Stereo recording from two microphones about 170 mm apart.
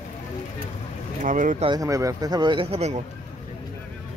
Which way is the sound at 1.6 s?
20° right (ahead or behind).